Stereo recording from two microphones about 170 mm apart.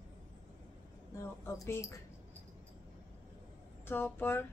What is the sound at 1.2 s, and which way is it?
Speech, 15° left (ahead or behind).